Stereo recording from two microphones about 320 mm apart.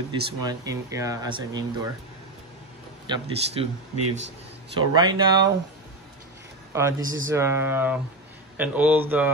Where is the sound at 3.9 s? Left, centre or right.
Right.